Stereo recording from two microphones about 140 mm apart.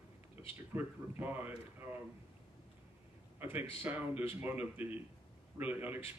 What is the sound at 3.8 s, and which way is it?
Speech, 15° right (ahead or behind).